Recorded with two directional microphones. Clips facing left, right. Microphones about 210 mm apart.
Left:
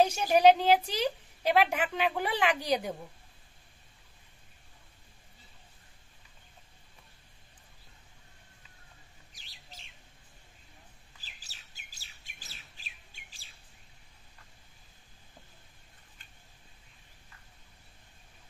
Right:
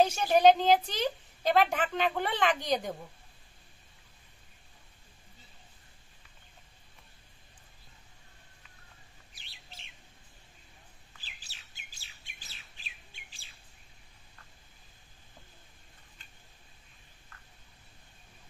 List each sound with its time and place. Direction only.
0.0 s a woman's voice: 10° left (ahead or behind)
9.3 s bird: 40° left (ahead or behind)
11.2 s bird: 40° left (ahead or behind)